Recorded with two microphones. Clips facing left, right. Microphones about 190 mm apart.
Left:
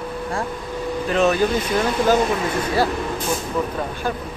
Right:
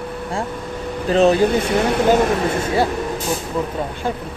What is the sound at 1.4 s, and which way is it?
Speech, 65° right (ahead or behind).